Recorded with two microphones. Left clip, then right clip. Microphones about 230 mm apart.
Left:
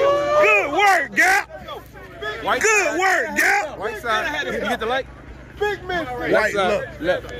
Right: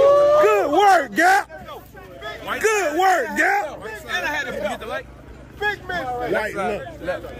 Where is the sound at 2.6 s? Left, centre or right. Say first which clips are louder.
Right 1 dB; centre.